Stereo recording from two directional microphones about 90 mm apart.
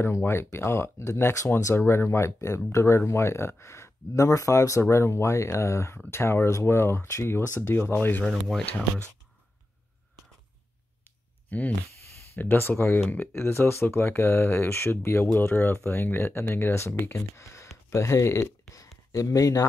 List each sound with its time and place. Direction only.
0.0 s speech: 30° left (ahead or behind)
8.3 s speech: 5° left (ahead or behind)
11.1 s a sound: 15° left (ahead or behind)
12.4 s speech: 25° left (ahead or behind)